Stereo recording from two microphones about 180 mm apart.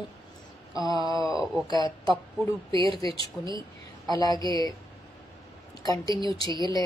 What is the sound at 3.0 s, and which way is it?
Speech, 20° left (ahead or behind).